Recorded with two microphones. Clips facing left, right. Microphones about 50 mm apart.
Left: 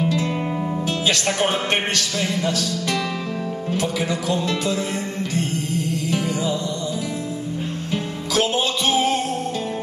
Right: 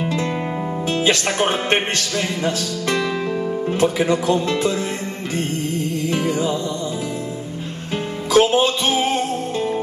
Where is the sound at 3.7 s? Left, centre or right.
Right.